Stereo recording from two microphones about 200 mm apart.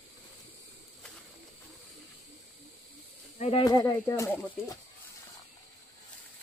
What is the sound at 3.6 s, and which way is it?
Speech, 20° left (ahead or behind).